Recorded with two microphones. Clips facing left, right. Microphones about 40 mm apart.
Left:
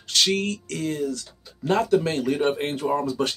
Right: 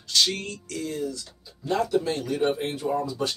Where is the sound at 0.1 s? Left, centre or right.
Left.